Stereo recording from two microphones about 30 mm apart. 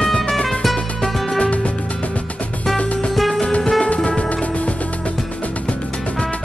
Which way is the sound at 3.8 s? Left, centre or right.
Left.